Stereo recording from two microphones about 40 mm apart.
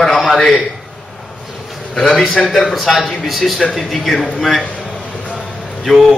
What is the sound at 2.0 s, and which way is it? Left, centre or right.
Speech, centre.